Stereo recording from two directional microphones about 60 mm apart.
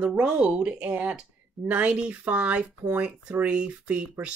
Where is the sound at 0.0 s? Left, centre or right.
Centre.